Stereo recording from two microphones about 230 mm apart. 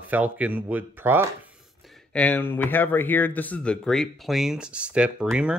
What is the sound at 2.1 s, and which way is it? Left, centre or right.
Speech, centre.